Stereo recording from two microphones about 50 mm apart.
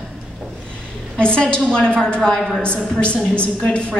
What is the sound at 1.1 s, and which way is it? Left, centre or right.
A woman's voice, left.